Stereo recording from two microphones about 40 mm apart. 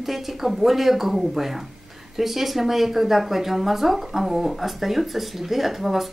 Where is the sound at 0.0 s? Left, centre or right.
Centre.